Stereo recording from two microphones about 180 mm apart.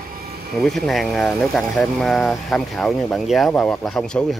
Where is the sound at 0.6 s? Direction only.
Centre (ahead or behind).